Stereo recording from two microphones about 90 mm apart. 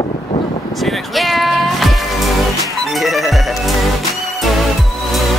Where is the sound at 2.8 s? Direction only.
Centre (ahead or behind).